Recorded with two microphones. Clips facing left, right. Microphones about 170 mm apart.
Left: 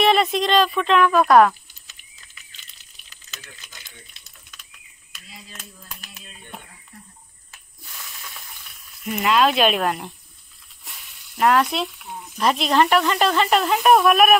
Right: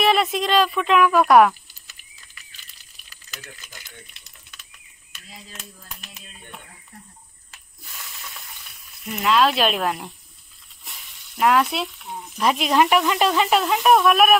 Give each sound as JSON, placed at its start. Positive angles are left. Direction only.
{"t": 0.0, "sound": "speech", "side_deg": -5}
{"t": 1.5, "sound": "a sound", "side_deg": 20}
{"t": 9.2, "sound": "speech", "side_deg": 0}
{"t": 11.3, "sound": "speech", "side_deg": -5}